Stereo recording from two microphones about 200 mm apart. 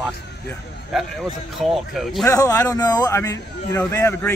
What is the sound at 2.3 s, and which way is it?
Speech, 15° left (ahead or behind).